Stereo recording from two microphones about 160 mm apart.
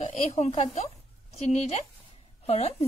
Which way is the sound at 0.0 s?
45° left (ahead or behind).